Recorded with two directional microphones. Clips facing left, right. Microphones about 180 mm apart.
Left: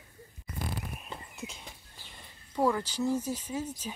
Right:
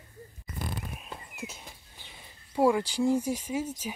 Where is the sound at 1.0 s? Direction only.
Centre (ahead or behind).